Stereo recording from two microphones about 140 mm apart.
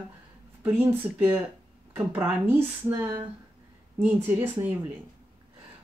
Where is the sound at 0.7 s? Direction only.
15° right (ahead or behind).